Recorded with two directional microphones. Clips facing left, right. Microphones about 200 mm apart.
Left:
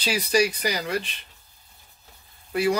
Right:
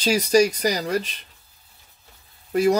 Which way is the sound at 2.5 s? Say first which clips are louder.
Right 4 dB; 40° right (ahead or behind).